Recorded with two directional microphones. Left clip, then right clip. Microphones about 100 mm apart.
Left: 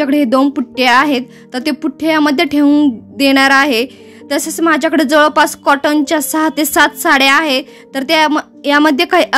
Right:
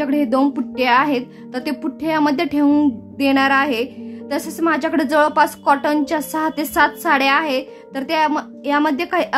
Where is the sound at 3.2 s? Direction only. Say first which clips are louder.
Left 6 dB; 55° left (ahead or behind).